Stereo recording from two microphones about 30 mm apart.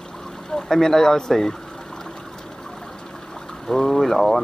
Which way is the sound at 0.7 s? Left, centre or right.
Centre.